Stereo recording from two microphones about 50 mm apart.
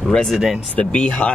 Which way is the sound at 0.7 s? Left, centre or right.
Left.